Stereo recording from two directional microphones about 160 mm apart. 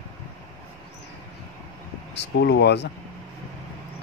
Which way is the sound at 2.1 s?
90° left.